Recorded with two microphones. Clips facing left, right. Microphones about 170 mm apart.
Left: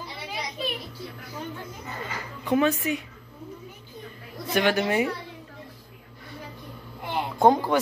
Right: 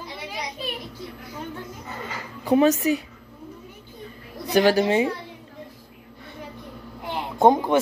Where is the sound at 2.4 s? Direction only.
40° right (ahead or behind).